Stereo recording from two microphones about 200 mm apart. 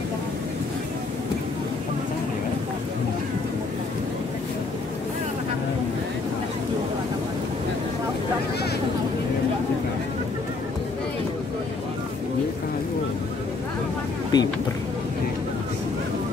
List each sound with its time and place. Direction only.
14.3 s speech: 20° left (ahead or behind)